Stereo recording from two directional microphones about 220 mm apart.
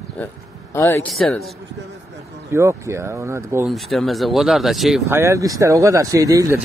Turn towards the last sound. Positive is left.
turn(degrees=-15)  # may be behind; listen again after turning